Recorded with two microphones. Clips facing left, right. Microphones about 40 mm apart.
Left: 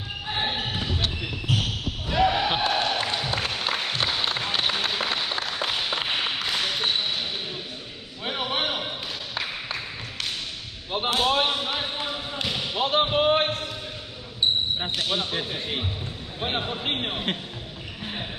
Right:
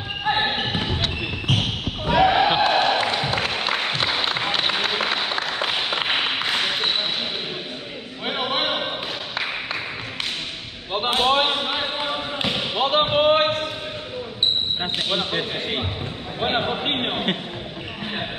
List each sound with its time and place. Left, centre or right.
0.2 s basketball bounce: right
8.3 s a sound: right
9.4 s tap: right
10.9 s basketball bounce: right
15.0 s basketball bounce: right
16.3 s a sound: right